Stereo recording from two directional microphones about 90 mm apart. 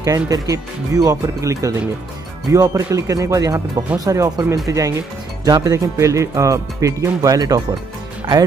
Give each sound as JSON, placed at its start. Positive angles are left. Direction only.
{"t": 0.0, "sound": "speech", "side_deg": -40}